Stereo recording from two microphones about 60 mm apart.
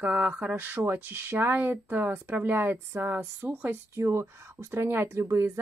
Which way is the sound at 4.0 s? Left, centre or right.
Right.